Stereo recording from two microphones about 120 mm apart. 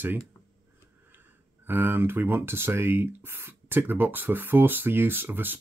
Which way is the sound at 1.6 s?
15° right (ahead or behind).